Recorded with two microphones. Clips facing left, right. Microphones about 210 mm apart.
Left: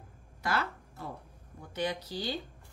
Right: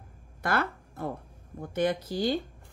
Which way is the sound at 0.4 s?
55° right (ahead or behind).